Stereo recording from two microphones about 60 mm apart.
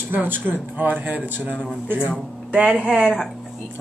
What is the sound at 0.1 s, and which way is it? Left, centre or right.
A man's voice, right.